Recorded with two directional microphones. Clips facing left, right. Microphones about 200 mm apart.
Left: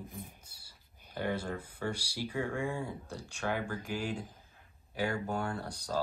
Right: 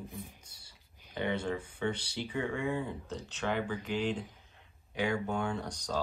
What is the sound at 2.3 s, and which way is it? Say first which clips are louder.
Speech: right 2 dB; 5° left (ahead or behind).